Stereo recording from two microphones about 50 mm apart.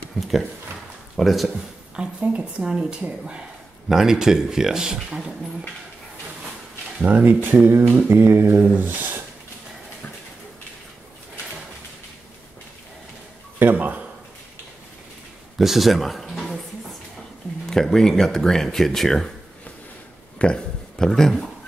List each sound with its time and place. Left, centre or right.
0.2 s speech: centre
2.0 s a woman's voice: right
3.9 s speech: centre
7.1 s speech: right
8.1 s mantra: right
8.7 s speech: right
13.6 s a sound: right
15.5 s speech: centre
17.6 s speech: centre
20.3 s speech: centre